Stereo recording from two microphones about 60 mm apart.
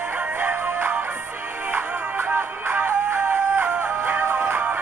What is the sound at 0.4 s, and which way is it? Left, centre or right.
Music, right.